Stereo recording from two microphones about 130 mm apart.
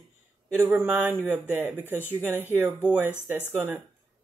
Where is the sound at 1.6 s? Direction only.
15° right (ahead or behind).